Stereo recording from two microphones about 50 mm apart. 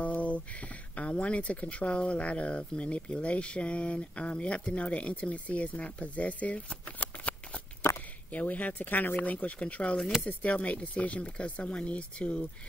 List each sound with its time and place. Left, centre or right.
0.0 s speech: left
7.0 s shuffling cards: left
8.3 s speech: left